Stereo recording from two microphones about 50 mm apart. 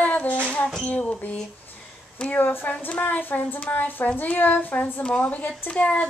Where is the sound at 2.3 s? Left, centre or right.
Left.